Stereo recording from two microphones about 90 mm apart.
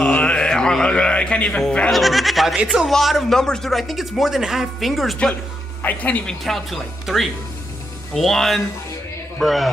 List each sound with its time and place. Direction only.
0.0 s speech: 15° left (ahead or behind)
5.8 s speech: 20° left (ahead or behind)
6.2 s speech: centre (ahead or behind)